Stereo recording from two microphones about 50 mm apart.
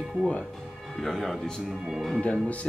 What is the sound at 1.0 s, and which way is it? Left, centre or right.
Speech, centre.